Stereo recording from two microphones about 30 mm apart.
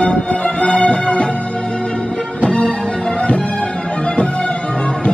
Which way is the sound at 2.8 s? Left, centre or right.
Left.